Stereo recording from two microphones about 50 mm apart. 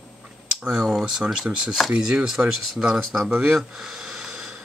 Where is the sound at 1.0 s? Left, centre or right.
Centre.